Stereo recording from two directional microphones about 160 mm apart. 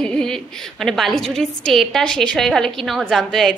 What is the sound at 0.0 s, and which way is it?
A woman's voice, 5° left (ahead or behind).